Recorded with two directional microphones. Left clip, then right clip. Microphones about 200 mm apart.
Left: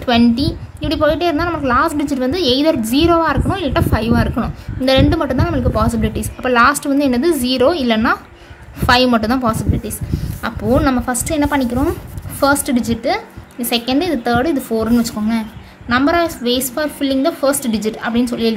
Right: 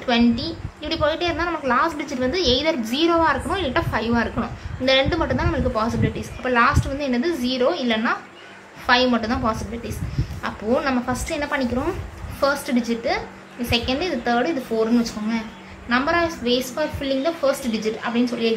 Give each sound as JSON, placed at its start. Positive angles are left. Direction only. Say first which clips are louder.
{"t": 0.0, "sound": "a woman's voice", "louder": "left 6 dB", "side_deg": 45}